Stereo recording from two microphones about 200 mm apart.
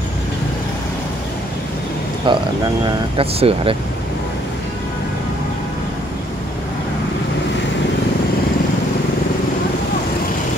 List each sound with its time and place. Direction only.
2.3 s speech: 25° right (ahead or behind)